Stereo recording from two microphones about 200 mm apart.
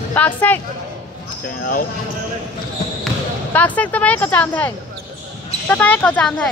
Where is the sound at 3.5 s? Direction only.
10° left (ahead or behind).